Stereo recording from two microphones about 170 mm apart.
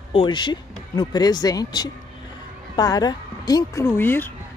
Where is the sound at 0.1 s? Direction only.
30° left (ahead or behind).